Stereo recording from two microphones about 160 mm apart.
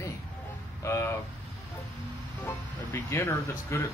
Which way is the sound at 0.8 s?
15° left (ahead or behind).